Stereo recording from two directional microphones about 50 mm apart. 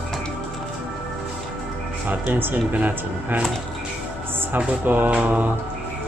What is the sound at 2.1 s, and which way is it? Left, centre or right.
Speech, right.